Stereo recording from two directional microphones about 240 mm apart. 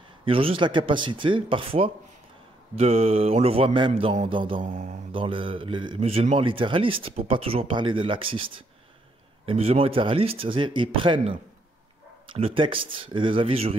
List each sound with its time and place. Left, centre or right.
0.2 s speech: right
4.6 s speech: right